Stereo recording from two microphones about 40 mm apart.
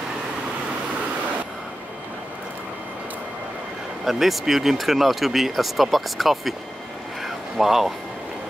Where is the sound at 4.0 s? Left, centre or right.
Centre.